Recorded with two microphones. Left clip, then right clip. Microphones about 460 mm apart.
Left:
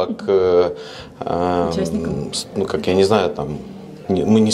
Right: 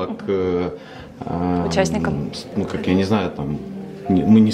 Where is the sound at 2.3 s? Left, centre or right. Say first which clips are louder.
Left 5 dB; left.